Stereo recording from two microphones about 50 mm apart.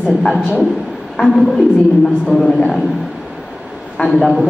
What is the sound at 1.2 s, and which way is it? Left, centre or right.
A man's voice, centre.